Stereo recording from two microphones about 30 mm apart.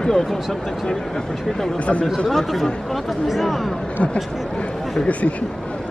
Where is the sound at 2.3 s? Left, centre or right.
Centre.